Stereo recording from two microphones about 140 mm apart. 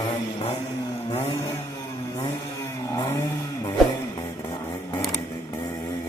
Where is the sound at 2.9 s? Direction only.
20° left (ahead or behind).